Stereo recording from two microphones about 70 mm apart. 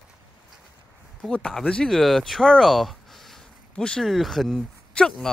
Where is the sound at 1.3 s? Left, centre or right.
Centre.